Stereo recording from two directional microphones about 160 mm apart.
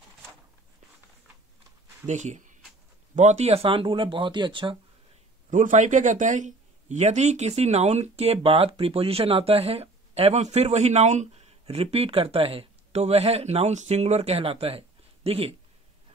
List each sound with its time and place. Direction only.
2.0 s a man's voice: 45° right (ahead or behind); by 4.7 s 30° right (ahead or behind)
5.5 s a man's voice: 50° right (ahead or behind)